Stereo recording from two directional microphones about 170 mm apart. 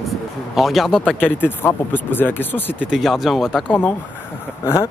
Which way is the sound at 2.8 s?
Centre (ahead or behind).